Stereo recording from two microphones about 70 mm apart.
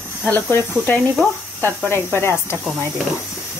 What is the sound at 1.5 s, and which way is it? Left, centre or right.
A woman's voice, left.